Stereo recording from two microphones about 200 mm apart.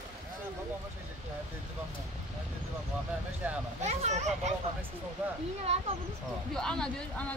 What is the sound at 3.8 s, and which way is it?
Speech, 35° right (ahead or behind).